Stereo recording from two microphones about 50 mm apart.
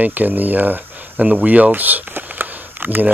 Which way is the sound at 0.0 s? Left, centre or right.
Right.